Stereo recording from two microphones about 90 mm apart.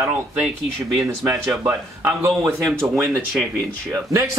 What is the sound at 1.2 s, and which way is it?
Speech, 25° right (ahead or behind).